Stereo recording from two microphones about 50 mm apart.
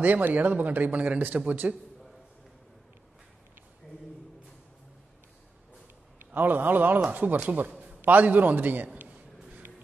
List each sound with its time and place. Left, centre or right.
0.0 s a man's voice: right
6.1 s a man's voice: right
8.0 s a sound: right